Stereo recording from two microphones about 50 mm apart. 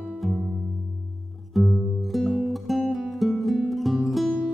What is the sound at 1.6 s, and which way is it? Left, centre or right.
Music, centre.